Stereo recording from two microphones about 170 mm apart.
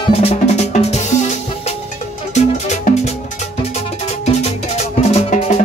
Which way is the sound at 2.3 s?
45° left (ahead or behind).